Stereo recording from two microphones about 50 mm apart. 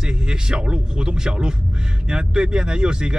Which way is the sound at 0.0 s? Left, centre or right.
Centre.